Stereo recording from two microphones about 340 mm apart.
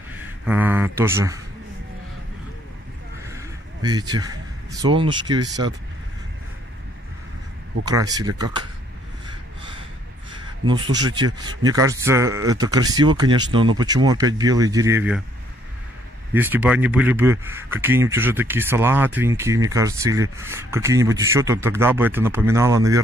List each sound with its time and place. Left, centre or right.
0.5 s speech: centre
3.3 s speech: centre
7.8 s speech: centre
10.7 s speech: centre
16.3 s speech: centre